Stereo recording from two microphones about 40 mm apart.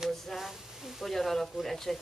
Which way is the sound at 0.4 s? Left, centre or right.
Centre.